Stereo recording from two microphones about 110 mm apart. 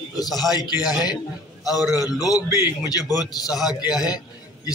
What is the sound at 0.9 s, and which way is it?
Speech, 40° left (ahead or behind).